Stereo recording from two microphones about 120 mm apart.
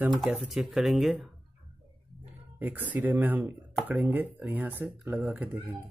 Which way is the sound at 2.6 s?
15° right (ahead or behind).